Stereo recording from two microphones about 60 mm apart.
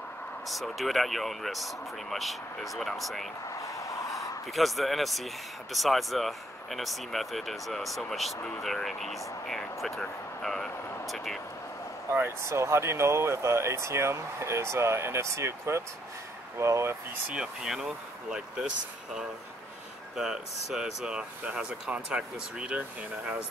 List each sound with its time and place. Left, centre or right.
0.5 s speech: centre
3.4 s a sound: left
4.5 s speech: centre
12.1 s speech: right
17.3 s speech: centre
20.2 s speech: centre